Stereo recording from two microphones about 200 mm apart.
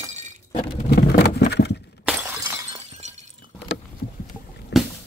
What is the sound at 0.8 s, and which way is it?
Vehicle, 50° left (ahead or behind).